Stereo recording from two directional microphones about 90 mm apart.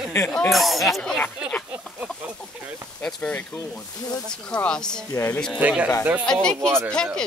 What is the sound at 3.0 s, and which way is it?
Speech, 10° left (ahead or behind).